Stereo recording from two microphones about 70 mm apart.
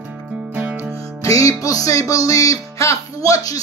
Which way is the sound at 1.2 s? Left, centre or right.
Left.